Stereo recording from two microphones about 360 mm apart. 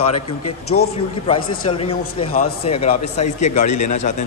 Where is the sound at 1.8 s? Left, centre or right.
Centre.